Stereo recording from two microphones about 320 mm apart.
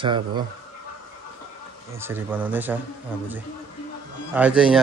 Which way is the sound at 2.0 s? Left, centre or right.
Centre.